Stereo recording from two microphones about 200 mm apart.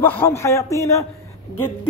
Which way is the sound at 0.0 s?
10° left (ahead or behind).